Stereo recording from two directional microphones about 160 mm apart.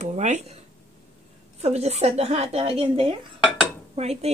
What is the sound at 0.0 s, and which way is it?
Speech, 45° right (ahead or behind).